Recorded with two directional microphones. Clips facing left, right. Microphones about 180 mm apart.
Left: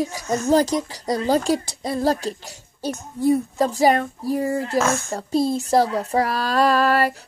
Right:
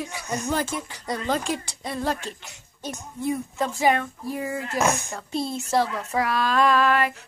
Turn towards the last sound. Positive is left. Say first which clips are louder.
# left 3 dB
turn(degrees=35)  # may be behind; listen again after turning